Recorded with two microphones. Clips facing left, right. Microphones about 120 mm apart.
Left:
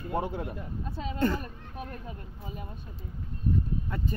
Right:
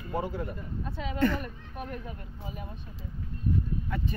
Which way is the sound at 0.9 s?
35° left (ahead or behind).